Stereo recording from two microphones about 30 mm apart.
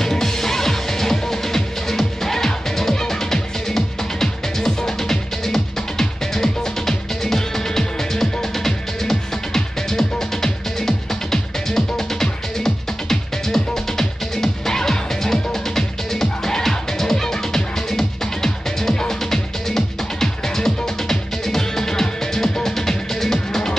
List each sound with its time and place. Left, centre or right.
0.0 s music: centre